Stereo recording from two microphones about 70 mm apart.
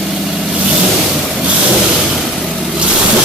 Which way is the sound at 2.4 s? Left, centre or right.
Centre.